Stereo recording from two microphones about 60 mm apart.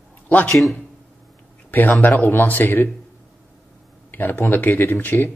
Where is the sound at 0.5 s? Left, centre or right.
Centre.